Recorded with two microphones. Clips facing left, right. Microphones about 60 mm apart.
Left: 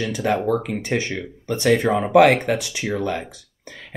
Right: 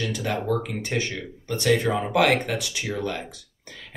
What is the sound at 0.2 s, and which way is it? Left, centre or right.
Speech, left.